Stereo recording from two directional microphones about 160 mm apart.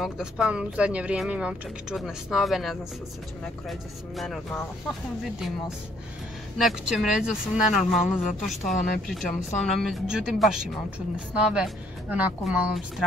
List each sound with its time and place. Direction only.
0.0 s a woman's voice: 5° right (ahead or behind)
6.6 s a woman's voice: centre (ahead or behind)
8.7 s speech: 60° left (ahead or behind)
9.6 s a woman's voice: centre (ahead or behind)